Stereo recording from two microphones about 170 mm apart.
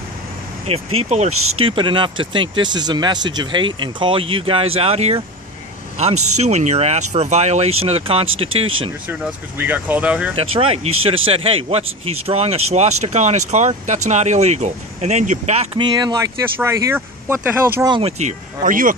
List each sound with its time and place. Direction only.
0.7 s speech: 35° right (ahead or behind)
9.0 s speech: 10° right (ahead or behind)
10.3 s speech: 35° right (ahead or behind); by 17.8 s 10° right (ahead or behind)
17.8 s speech: 30° right (ahead or behind)
18.2 s speech: 50° right (ahead or behind)